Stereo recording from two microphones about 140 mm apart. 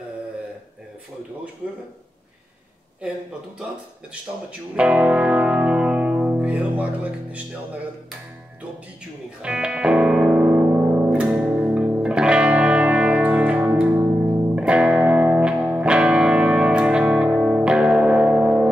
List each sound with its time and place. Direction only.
4.1 s music: 10° right (ahead or behind)
9.4 s music: 5° right (ahead or behind)
14.5 s music: 5° right (ahead or behind)